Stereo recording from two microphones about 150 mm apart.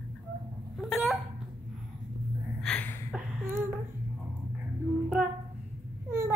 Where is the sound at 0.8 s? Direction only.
Centre (ahead or behind).